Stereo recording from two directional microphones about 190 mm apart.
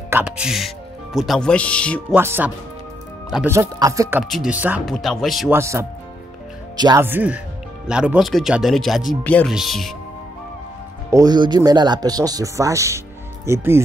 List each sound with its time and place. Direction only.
0.1 s speech: 5° right (ahead or behind)
2.1 s speech: 10° right (ahead or behind)
4.2 s speech: centre (ahead or behind)
5.5 s speech: 15° right (ahead or behind)
7.1 s speech: 10° right (ahead or behind)
11.1 s speech: 20° right (ahead or behind)